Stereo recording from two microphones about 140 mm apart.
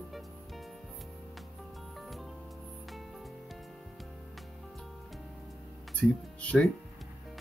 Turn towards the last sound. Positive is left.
turn(degrees=10)  # may be behind; listen again after turning